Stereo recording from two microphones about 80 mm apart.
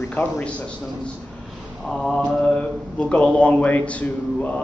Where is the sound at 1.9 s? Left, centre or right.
Centre.